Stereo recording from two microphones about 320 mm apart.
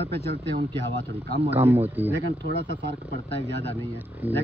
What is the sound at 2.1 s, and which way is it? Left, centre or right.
Speech, right.